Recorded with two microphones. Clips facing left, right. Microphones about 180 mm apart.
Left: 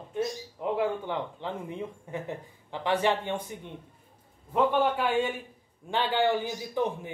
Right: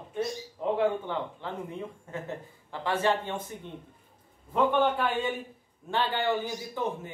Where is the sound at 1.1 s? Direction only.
15° left (ahead or behind).